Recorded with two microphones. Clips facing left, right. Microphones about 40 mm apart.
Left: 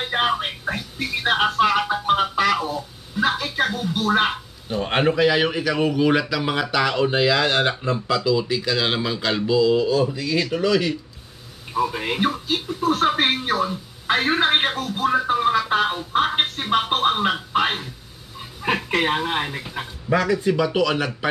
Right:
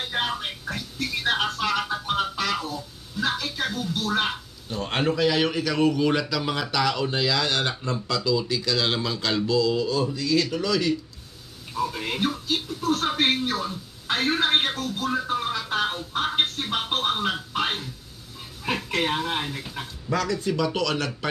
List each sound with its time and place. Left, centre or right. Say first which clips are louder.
0.0 s speech: left 6 dB; left